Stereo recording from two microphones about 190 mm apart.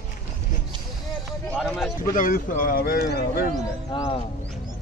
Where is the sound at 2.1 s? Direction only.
45° left (ahead or behind).